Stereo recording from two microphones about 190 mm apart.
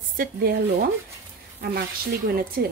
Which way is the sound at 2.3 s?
50° right (ahead or behind).